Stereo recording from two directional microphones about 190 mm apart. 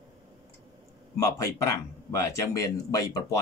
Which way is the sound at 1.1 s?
15° left (ahead or behind).